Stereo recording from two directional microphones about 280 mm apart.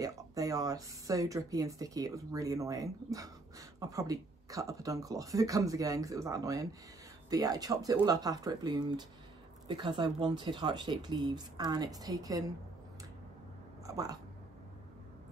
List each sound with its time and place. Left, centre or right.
0.0 s speech: centre
13.8 s speech: centre